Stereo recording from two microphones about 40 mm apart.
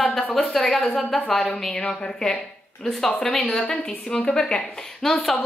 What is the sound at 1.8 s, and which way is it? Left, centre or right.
A woman's voice, left.